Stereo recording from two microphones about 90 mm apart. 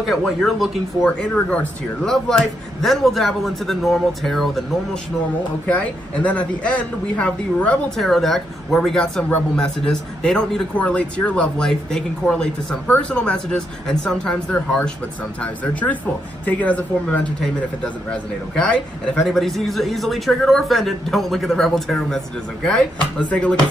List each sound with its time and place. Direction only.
0.0 s a man's voice: 5° left (ahead or behind)
1.0 s a man's voice: 15° left (ahead or behind)
2.0 s a man's voice: 5° left (ahead or behind)
5.7 s a man's voice: 15° left (ahead or behind)
8.0 s a man's voice: centre (ahead or behind)